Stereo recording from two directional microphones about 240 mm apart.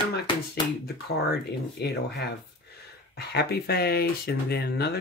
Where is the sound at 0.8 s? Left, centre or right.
Left.